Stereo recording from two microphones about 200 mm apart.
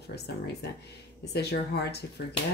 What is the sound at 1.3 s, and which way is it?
Speech, 55° left (ahead or behind).